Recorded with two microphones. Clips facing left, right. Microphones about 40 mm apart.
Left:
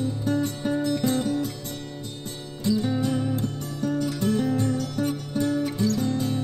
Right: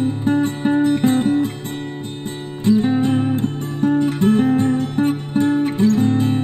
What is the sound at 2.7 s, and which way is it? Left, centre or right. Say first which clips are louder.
Music: right 8 dB; right.